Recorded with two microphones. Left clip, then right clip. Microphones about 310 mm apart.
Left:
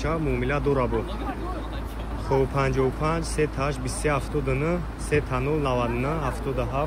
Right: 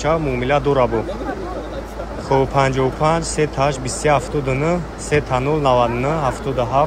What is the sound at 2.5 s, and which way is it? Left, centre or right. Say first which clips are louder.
Speech: right 8 dB; centre.